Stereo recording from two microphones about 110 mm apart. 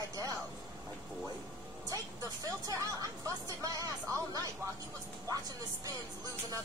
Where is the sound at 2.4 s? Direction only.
30° right (ahead or behind).